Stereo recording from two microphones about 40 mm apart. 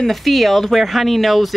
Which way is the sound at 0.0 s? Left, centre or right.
Centre.